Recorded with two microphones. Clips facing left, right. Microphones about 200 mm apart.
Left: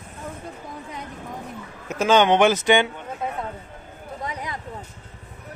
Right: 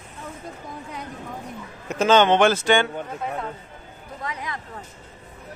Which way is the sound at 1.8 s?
10° left (ahead or behind).